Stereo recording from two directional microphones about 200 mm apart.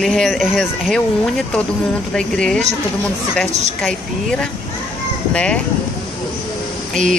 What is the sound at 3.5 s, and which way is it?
Speech, 35° right (ahead or behind).